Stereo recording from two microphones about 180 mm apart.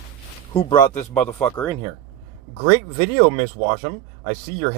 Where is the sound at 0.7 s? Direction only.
25° left (ahead or behind).